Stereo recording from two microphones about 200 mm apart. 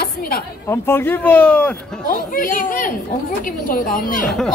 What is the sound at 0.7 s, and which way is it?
Speech, 10° left (ahead or behind).